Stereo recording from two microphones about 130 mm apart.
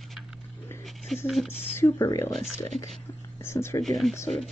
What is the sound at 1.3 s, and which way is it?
Speech, 5° right (ahead or behind).